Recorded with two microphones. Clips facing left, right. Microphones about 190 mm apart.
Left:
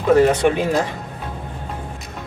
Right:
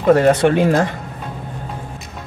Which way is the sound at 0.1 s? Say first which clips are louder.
Right 2 dB; 60° right (ahead or behind).